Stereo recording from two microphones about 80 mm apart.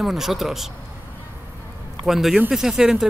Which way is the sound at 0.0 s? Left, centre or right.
Centre.